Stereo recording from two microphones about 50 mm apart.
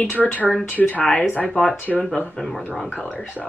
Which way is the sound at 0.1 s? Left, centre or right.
Left.